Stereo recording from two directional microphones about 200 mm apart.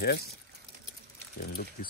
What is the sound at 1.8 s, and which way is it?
Speech, 40° left (ahead or behind).